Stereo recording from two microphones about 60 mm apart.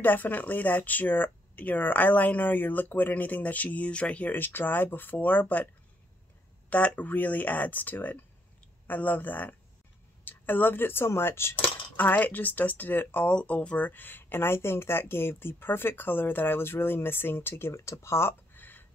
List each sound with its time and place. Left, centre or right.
0.0 s speech: left
6.7 s speech: left
12.0 s speech: left
17.7 s speech: left
18.5 s a sound: left